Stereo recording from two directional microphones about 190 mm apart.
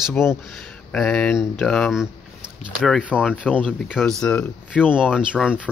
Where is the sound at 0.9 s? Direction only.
Centre (ahead or behind).